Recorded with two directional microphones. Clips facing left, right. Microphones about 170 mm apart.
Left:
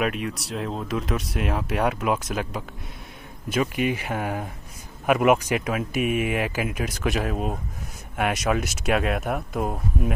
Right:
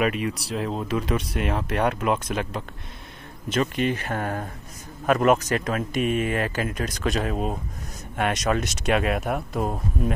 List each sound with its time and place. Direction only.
0.0 s speech: centre (ahead or behind)